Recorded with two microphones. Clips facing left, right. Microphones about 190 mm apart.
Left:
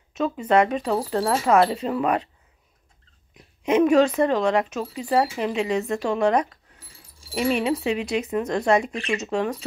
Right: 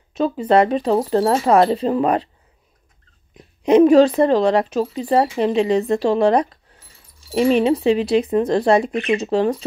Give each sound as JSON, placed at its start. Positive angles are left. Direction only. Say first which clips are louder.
{"t": 0.1, "sound": "speech", "louder": "right 4 dB", "side_deg": -35}
{"t": 3.6, "sound": "speech", "louder": "right 6 dB", "side_deg": -35}